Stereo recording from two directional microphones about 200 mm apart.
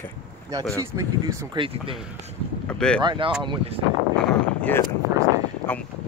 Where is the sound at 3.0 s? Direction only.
25° right (ahead or behind).